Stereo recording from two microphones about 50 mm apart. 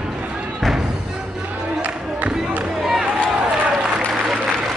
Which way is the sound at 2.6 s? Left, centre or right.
Centre.